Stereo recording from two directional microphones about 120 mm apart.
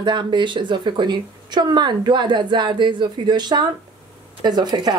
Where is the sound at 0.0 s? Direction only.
40° right (ahead or behind).